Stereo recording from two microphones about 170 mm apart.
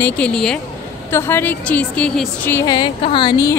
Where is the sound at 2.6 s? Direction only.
25° left (ahead or behind).